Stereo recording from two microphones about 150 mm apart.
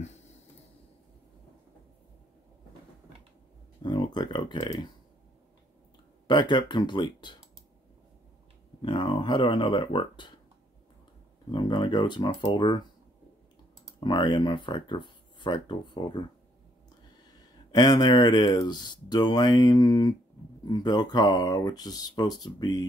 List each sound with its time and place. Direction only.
3.8 s speech: 30° left (ahead or behind)
6.2 s speech: 30° left (ahead or behind)
8.8 s speech: 35° left (ahead or behind)
11.5 s speech: 30° left (ahead or behind)
13.9 s speech: 30° left (ahead or behind)
17.6 s speech: 25° left (ahead or behind)